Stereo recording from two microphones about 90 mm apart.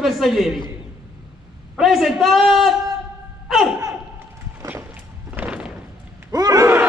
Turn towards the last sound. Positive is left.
turn(degrees=-40)  # may be behind; listen again after turning